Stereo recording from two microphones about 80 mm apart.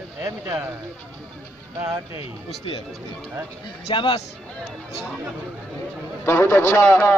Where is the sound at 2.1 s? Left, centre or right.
Left.